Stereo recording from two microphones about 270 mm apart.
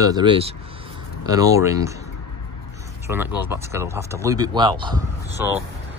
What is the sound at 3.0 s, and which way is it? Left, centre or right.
Speech, centre.